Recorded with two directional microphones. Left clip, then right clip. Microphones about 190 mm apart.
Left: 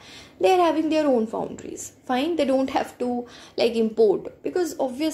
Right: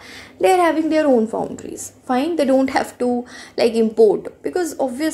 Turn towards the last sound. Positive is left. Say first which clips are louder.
# right 4 dB
turn(degrees=-10)  # may be behind; listen again after turning